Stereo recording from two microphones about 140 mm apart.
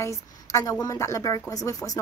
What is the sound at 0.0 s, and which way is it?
Speech, 20° left (ahead or behind).